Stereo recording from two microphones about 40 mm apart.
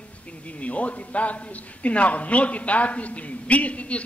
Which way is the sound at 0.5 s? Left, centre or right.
Left.